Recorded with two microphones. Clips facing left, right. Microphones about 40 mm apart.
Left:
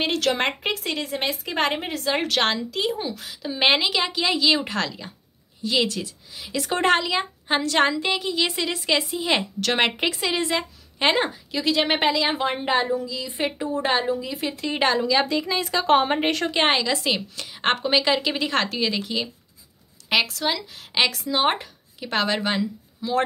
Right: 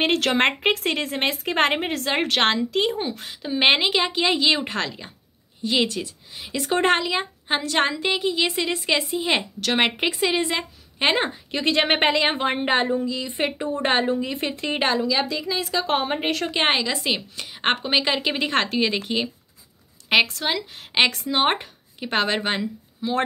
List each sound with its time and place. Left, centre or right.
0.0 s a woman's voice: right
2.1 s a woman's voice: right
3.3 s a woman's voice: centre
11.2 s a woman's voice: right
13.6 s a woman's voice: centre
13.8 s a woman's voice: right
15.0 s a woman's voice: centre
16.4 s a woman's voice: centre; by 23.2 s right